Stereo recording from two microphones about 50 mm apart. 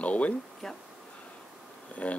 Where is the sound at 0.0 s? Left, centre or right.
Left.